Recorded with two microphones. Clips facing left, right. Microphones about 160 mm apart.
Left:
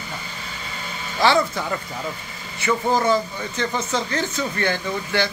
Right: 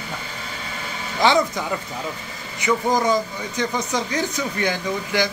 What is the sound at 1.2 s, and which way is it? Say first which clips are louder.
Speech: even; 20° right (ahead or behind).